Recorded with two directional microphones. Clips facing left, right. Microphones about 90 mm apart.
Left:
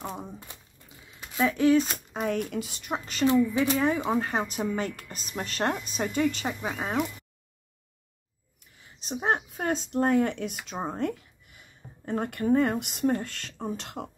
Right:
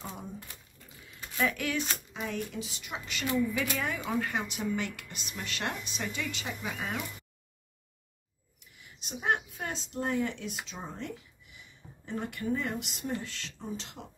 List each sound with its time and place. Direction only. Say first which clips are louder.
1.1 s speech: left 4 dB; 20° left (ahead or behind)
2.1 s a woman's voice: left 9 dB; 55° left (ahead or behind); by 7.0 s 35° left (ahead or behind)
8.7 s speech: left 7 dB; 35° left (ahead or behind); by 14.0 s 55° left (ahead or behind)